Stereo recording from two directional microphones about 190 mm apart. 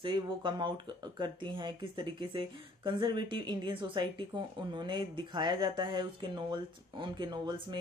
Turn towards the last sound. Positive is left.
turn(degrees=-25)  # may be behind; listen again after turning